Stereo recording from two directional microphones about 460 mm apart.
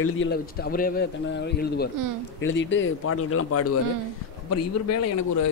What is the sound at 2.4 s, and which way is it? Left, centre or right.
A man's voice, left.